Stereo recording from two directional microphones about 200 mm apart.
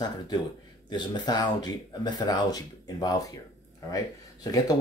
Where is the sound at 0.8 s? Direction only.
20° left (ahead or behind).